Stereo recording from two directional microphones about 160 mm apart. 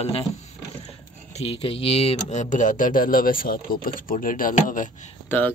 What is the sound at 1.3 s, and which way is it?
Speech, 40° left (ahead or behind).